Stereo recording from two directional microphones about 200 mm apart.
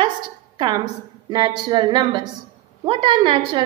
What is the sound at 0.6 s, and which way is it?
A woman's voice, 20° right (ahead or behind).